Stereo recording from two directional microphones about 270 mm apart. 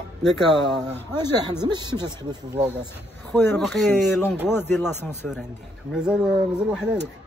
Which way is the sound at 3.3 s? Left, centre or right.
Centre.